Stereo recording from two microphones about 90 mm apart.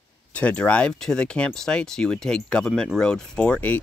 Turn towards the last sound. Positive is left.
turn(degrees=15)  # may be behind; listen again after turning